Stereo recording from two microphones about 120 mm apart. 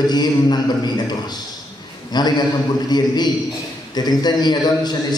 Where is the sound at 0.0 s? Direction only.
35° left (ahead or behind).